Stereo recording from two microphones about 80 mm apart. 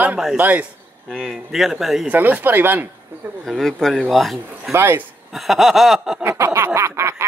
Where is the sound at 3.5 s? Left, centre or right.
Centre.